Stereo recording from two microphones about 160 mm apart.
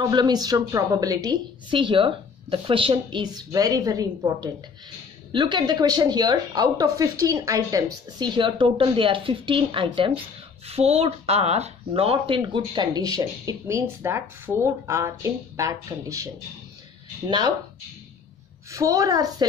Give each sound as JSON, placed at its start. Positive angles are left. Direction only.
{"t": 0.0, "sound": "speech", "side_deg": -25}
{"t": 18.7, "sound": "speech", "side_deg": -20}